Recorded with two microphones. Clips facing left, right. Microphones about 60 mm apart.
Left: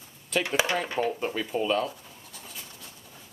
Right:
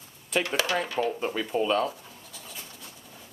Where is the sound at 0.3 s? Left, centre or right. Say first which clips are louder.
Even; centre.